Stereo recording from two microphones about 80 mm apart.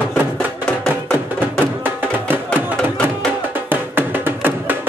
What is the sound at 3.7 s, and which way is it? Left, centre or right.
Music, right.